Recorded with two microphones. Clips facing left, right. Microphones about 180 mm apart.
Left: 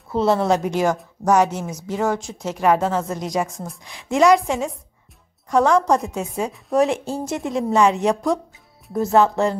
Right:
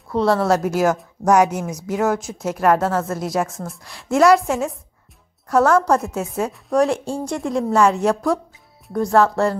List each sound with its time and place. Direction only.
0.1 s a woman's voice: centre (ahead or behind)